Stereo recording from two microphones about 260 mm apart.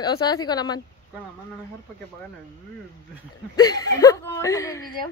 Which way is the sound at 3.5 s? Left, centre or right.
Centre.